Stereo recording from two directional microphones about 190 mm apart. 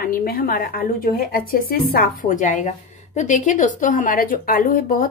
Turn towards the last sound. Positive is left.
turn(degrees=45)  # may be behind; listen again after turning